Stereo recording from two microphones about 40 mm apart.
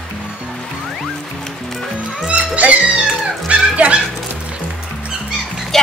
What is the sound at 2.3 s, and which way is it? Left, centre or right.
Music, right.